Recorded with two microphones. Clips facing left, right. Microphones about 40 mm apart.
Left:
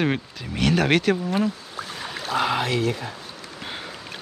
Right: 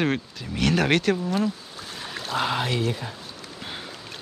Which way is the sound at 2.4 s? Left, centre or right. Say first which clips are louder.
Left 2 dB; left.